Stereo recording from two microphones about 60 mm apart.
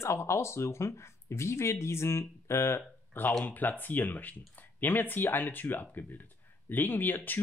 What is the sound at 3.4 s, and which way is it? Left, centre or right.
Speech, left.